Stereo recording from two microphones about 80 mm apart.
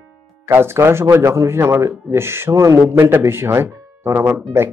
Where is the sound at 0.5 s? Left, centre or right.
Right.